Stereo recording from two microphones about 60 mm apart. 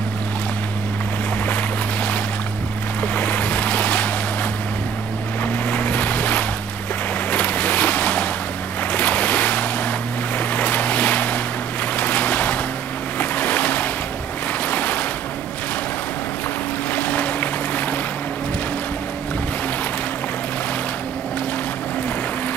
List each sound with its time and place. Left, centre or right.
3.0 s boat: left
5.4 s boat: left
8.9 s waves: left
10.3 s boat: left
14.7 s waves: left
16.9 s boat: left